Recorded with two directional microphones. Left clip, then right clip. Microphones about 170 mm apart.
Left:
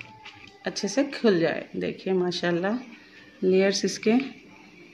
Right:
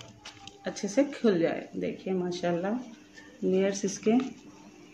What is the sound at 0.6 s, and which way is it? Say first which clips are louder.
Speech: left 2 dB; 40° left (ahead or behind).